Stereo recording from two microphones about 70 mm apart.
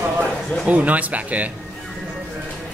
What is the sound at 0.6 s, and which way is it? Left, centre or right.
Speech, right.